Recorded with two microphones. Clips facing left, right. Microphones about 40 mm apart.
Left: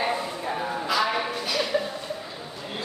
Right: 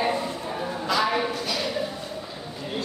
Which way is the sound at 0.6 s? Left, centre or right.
Centre.